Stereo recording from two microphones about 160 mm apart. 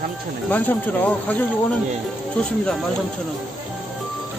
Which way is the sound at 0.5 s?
10° left (ahead or behind).